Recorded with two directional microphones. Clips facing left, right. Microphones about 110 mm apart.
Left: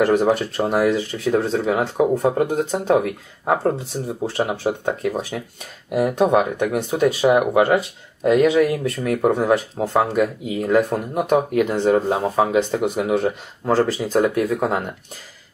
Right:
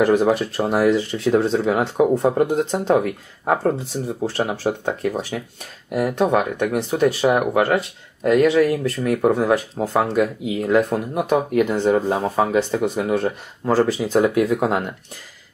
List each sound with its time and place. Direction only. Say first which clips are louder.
0.1 s speech: even; centre (ahead or behind)
0.8 s speech: right 2 dB; 10° left (ahead or behind)
8.2 s speech: even; 20° left (ahead or behind)
8.5 s speech: even; 10° left (ahead or behind)